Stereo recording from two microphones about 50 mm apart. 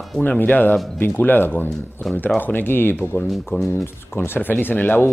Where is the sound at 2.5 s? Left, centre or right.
Left.